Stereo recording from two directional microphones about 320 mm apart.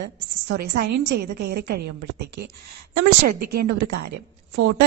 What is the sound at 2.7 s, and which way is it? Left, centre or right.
Speech, right.